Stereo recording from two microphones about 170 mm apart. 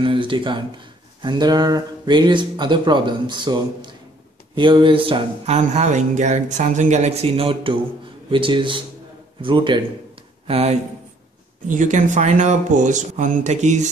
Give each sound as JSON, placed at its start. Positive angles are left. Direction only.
{"t": 0.0, "sound": "speech", "side_deg": -30}
{"t": 11.6, "sound": "speech", "side_deg": -50}